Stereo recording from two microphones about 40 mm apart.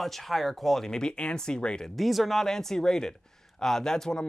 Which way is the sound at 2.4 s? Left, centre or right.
Centre.